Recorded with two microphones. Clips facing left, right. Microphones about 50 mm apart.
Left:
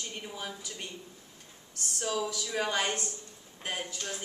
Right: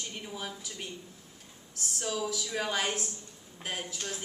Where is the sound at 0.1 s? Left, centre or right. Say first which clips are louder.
Even; centre.